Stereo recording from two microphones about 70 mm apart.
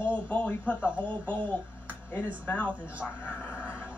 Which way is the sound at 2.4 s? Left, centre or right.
Left.